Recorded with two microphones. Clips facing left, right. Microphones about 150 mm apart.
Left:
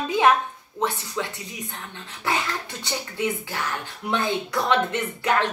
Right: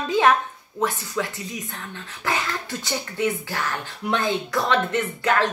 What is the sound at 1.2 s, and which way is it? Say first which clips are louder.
Speech: right 3 dB; 20° left (ahead or behind).